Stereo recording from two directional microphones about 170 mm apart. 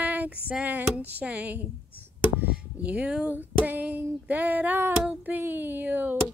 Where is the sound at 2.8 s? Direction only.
5° right (ahead or behind).